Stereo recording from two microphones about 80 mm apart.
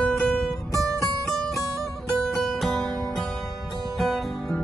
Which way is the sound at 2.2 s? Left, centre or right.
Centre.